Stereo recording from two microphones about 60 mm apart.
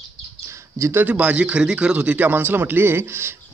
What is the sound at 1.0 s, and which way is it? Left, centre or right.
Speech, right.